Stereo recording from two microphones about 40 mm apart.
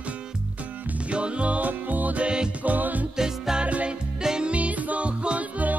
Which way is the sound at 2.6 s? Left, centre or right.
Right.